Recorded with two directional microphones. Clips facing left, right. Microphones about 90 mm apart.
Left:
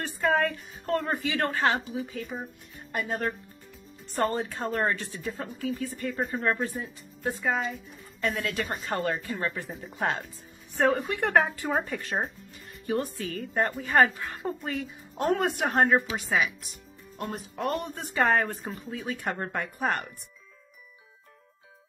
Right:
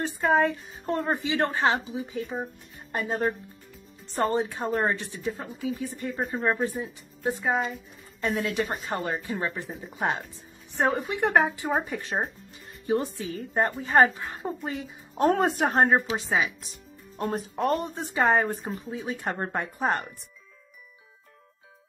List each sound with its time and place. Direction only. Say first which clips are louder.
0.0 s a woman's voice: right 3 dB; 20° right (ahead or behind)
4.3 s speech: right 4 dB; 15° right (ahead or behind)
4.6 s speech: even; 5° right (ahead or behind)
4.9 s a woman's voice: right 3 dB; 20° right (ahead or behind)
5.3 s speech: even; 5° right (ahead or behind)
5.8 s a woman's voice: even; 20° right (ahead or behind)
6.1 s speech: right 1 dB; centre (ahead or behind)
6.4 s a woman's voice: right 4 dB; 15° right (ahead or behind)
9.7 s speech: right 1 dB; 5° right (ahead or behind)
9.9 s a woman's voice: right 1 dB; 20° right (ahead or behind)
12.8 s a woman's voice: right 3 dB; 25° right (ahead or behind)
15.2 s a woman's voice: right 4 dB; 35° right (ahead or behind)
17.9 s a woman's voice: left 2 dB; 20° right (ahead or behind)